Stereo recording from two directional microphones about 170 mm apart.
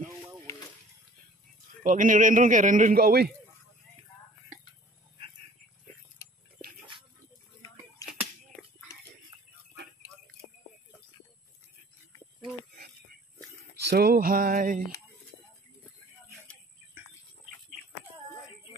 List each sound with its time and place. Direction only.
1.8 s a man's voice: 50° right (ahead or behind)
8.0 s slap: 20° left (ahead or behind)
13.8 s music: 65° right (ahead or behind)